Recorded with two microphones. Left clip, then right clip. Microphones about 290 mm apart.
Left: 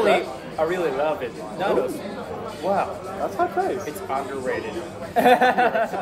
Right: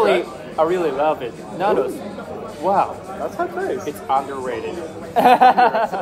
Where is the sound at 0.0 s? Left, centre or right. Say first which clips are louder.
Right 3 dB; centre.